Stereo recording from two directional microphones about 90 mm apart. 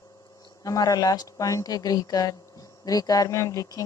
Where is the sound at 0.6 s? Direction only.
40° left (ahead or behind).